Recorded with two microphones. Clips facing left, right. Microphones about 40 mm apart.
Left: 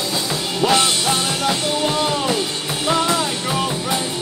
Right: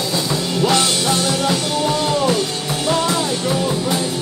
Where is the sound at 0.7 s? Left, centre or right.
Centre.